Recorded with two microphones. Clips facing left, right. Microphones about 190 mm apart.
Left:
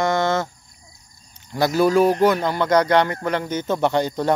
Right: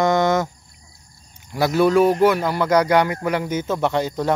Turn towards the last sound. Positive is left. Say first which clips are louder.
# left 1 dB
turn(degrees=0)  # may be behind; listen again after turning